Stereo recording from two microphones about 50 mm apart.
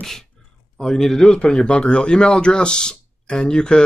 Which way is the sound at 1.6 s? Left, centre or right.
Centre.